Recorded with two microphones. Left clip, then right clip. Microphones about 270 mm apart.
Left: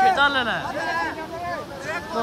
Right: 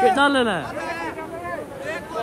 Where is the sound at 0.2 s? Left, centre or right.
Centre.